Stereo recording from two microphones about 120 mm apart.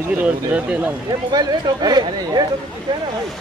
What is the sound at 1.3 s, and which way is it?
Speech, 35° right (ahead or behind).